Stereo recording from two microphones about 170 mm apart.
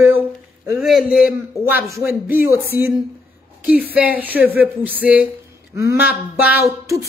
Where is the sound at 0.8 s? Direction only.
5° right (ahead or behind).